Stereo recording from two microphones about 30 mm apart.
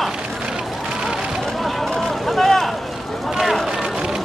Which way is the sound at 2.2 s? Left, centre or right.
Centre.